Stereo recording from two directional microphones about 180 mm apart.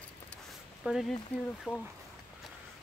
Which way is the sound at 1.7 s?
10° left (ahead or behind).